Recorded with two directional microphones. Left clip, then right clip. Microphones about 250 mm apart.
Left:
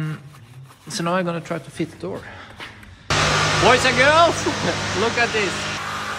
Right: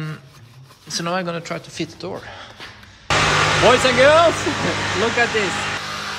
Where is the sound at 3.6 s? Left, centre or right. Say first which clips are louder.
Right 2 dB; centre.